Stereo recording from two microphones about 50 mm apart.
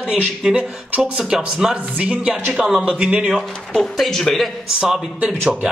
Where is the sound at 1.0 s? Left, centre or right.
Centre.